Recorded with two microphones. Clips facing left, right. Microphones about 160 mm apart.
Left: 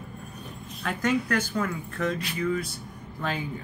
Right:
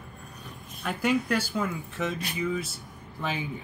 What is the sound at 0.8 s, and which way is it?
Speech, 5° right (ahead or behind).